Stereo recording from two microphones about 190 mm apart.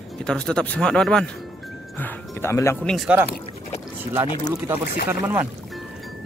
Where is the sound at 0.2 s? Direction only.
5° left (ahead or behind).